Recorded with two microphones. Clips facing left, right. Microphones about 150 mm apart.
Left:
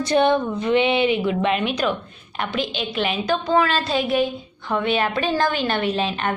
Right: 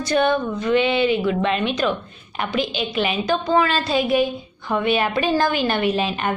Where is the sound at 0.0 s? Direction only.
25° left (ahead or behind).